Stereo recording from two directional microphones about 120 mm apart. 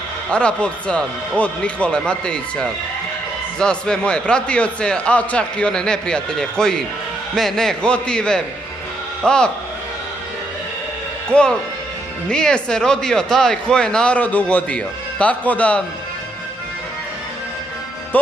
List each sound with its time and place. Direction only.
0.3 s speech: 10° left (ahead or behind)
11.3 s speech: 10° left (ahead or behind)
18.1 s speech: 15° left (ahead or behind)